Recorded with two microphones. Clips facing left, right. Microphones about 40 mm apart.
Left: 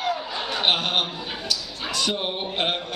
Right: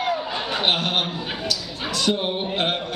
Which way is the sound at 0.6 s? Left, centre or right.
Centre.